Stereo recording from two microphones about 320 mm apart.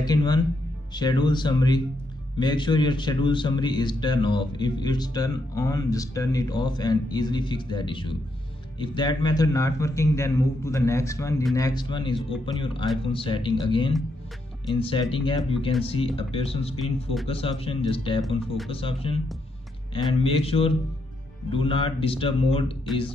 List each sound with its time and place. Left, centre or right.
0.0 s a man's voice: centre
16.8 s speech: centre
17.3 s a man's voice: centre